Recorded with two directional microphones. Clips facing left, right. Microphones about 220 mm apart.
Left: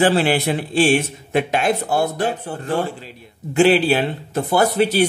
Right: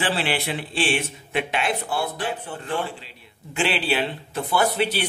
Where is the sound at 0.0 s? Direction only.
45° left (ahead or behind).